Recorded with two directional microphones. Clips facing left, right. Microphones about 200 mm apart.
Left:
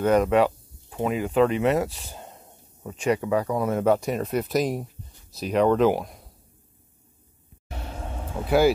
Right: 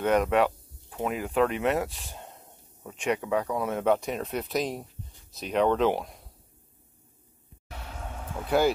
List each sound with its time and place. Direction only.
0.0 s speech: centre (ahead or behind)
7.7 s vehicle: 30° left (ahead or behind)